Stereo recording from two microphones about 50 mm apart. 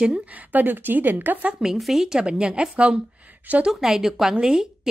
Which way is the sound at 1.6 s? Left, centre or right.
Centre.